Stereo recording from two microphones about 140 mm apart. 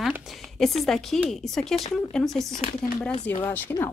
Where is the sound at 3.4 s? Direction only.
15° left (ahead or behind).